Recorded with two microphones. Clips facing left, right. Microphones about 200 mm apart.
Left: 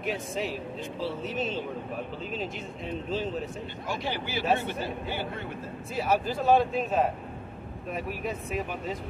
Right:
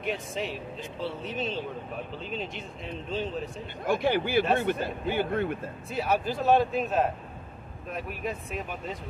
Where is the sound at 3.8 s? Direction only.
55° right (ahead or behind).